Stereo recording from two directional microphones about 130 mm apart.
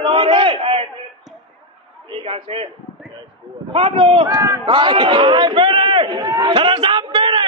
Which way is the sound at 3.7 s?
45° right (ahead or behind).